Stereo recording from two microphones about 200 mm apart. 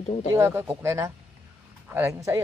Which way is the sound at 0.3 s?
15° right (ahead or behind).